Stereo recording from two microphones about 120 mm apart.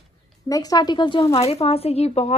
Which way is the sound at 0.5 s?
30° left (ahead or behind).